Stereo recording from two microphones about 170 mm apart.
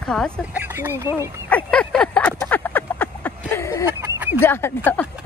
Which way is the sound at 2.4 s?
10° left (ahead or behind).